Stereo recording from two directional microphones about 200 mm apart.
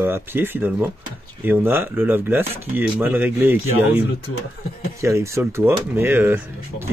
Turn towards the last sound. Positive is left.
turn(degrees=-10)  # may be behind; listen again after turning